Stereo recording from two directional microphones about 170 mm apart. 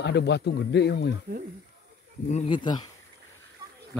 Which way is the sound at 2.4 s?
25° left (ahead or behind).